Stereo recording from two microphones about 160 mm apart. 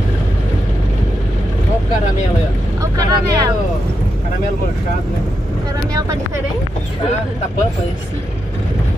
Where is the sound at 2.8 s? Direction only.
20° right (ahead or behind).